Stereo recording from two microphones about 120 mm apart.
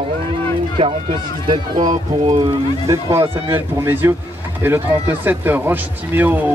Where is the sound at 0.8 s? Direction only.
45° right (ahead or behind).